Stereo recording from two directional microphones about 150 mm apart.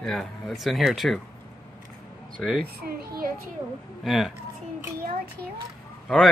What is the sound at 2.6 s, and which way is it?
Speech, 90° right.